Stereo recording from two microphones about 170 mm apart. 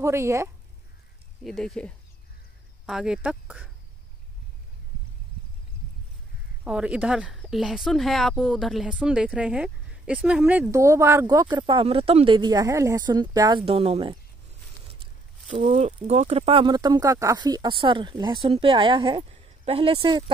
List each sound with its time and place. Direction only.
0.0 s speech: 15° right (ahead or behind)
1.4 s speech: centre (ahead or behind)
6.6 s speech: 5° right (ahead or behind); by 14.1 s 35° right (ahead or behind)
15.5 s speech: 40° right (ahead or behind)